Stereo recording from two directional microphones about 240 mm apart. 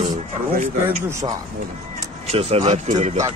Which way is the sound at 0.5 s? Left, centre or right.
Right.